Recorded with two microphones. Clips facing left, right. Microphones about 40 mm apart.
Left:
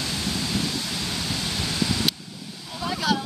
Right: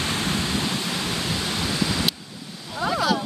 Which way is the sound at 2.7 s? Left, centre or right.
Centre.